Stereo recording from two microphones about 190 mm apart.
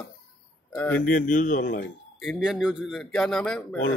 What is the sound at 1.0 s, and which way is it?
Speech, 45° left (ahead or behind).